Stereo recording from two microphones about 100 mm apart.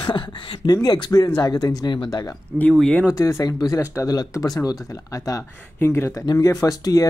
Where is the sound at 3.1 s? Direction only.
35° left (ahead or behind).